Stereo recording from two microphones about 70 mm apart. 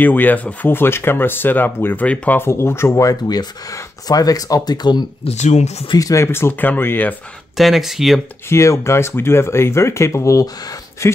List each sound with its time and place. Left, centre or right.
0.0 s speech: left
2.5 s speech: left
3.0 s speech: left
5.9 s speech: left
6.2 s speech: left
7.5 s speech: centre
8.5 s speech: left